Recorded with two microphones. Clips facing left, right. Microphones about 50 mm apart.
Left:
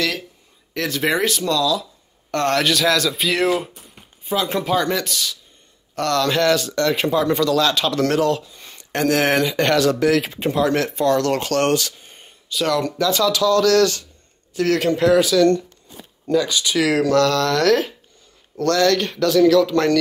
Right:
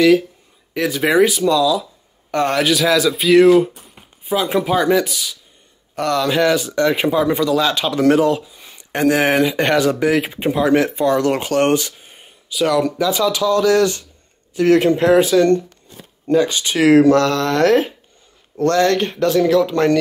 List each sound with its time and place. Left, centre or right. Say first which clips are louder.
0.7 s speech: right 6 dB; centre